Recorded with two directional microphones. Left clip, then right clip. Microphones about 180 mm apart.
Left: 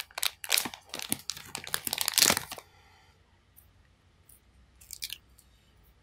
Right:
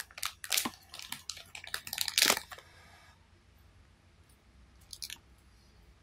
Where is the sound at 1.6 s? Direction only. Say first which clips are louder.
Left 3 dB; 30° left (ahead or behind).